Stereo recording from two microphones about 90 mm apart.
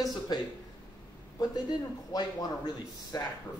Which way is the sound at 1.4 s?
50° left (ahead or behind).